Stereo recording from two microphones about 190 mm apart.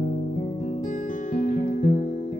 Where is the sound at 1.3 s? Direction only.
45° left (ahead or behind).